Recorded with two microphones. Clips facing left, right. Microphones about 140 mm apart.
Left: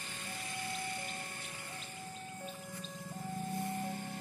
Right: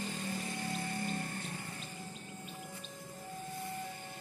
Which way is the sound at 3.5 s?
25° left (ahead or behind).